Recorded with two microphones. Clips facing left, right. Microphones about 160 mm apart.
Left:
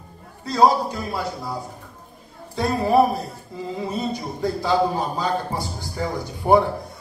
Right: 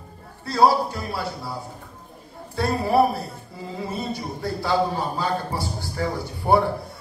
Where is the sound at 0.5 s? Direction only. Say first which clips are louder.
Left 1 dB; 20° left (ahead or behind).